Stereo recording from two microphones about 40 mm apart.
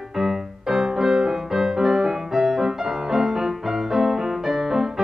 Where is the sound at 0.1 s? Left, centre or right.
Centre.